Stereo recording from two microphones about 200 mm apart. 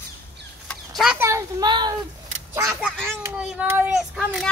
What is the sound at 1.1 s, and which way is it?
Speech, 15° right (ahead or behind).